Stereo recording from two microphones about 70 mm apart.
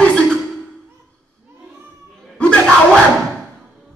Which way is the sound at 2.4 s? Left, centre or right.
Centre.